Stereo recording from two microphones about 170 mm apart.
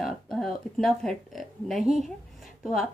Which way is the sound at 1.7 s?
40° right (ahead or behind).